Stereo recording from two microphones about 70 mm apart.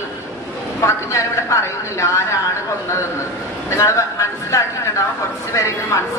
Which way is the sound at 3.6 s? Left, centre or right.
Left.